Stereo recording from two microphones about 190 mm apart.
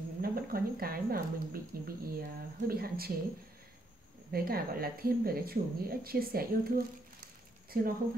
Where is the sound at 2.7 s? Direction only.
50° right (ahead or behind).